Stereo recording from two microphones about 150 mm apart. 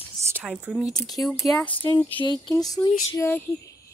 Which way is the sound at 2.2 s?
30° left (ahead or behind).